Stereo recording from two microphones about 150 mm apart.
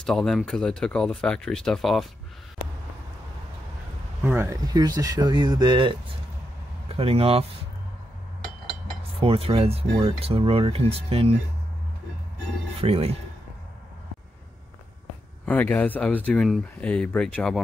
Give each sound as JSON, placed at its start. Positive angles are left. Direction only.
{"t": 0.0, "sound": "speech", "side_deg": 5}
{"t": 4.2, "sound": "speech", "side_deg": -15}
{"t": 4.6, "sound": "speech", "side_deg": -25}
{"t": 9.2, "sound": "speech", "side_deg": -40}
{"t": 12.8, "sound": "speech", "side_deg": -40}
{"t": 15.4, "sound": "speech", "side_deg": 10}